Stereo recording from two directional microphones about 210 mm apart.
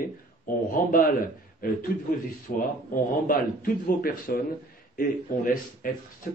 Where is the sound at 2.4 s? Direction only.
40° left (ahead or behind).